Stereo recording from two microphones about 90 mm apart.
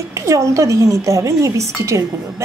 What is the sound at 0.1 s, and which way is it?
A woman's voice, 35° right (ahead or behind).